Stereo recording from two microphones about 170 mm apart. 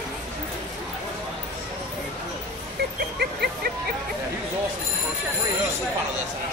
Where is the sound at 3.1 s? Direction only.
70° right (ahead or behind).